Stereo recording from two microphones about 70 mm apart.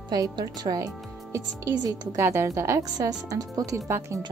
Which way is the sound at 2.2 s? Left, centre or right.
Right.